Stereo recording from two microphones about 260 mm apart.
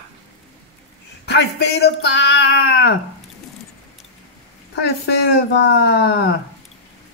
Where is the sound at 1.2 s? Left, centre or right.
Left.